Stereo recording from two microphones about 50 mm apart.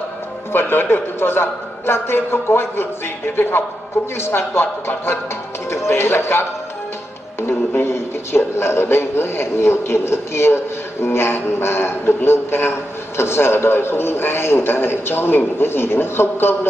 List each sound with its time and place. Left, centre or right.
0.5 s a man's voice: left
7.4 s a man's voice: left